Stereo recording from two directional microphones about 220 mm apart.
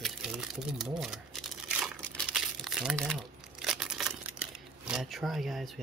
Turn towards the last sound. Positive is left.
turn(degrees=0)  # may be behind; listen again after turning